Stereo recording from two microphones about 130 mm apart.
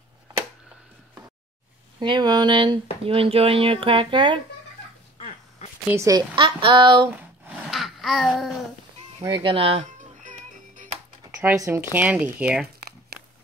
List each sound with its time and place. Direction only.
2.0 s speech: 35° right (ahead or behind)
5.9 s speech: 25° right (ahead or behind)
6.3 s speech: 40° right (ahead or behind)
7.1 s a sound: 10° right (ahead or behind)
7.7 s babbling: centre (ahead or behind)
9.2 s speech: 35° right (ahead or behind)
9.9 s music: 75° right (ahead or behind)
11.3 s speech: 20° right (ahead or behind)